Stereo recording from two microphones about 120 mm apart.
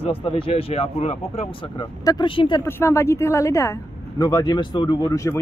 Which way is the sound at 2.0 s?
40° left (ahead or behind).